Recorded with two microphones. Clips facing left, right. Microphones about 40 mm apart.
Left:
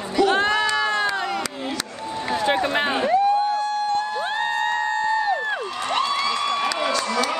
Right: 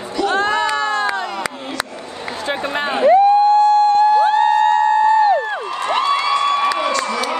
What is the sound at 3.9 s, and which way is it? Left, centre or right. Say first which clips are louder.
Music: right 12 dB; right.